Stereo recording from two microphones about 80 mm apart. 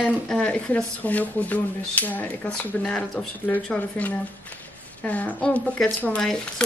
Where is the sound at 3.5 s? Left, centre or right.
Centre.